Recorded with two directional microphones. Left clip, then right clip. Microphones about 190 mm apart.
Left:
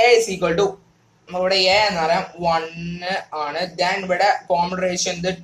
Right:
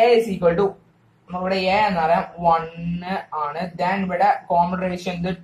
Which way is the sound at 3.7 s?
50° left (ahead or behind).